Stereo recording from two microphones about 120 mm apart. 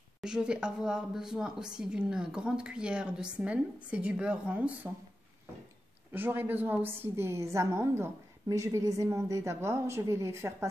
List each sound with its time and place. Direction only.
0.2 s speech: 5° right (ahead or behind)
6.1 s a woman's voice: 15° right (ahead or behind)